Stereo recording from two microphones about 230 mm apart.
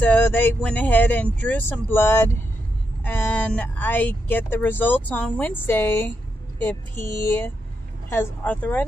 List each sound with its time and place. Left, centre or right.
0.0 s speech: centre